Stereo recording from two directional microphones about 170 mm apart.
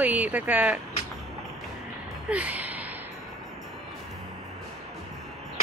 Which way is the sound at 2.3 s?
10° right (ahead or behind).